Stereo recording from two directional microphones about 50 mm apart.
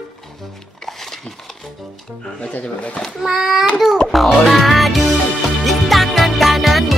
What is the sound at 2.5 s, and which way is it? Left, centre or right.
Speech, left.